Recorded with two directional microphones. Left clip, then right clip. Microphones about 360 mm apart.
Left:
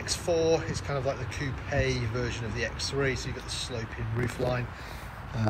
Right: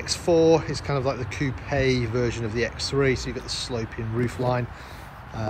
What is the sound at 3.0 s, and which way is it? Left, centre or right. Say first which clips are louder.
Speech: right 7 dB; centre.